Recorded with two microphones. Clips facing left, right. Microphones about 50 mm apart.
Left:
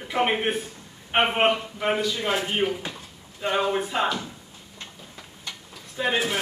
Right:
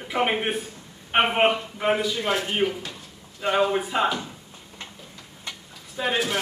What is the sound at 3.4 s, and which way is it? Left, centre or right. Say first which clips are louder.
Speech: right 2 dB; centre.